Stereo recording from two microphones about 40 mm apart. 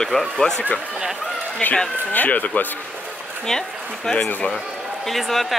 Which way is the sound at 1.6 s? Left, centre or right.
Left.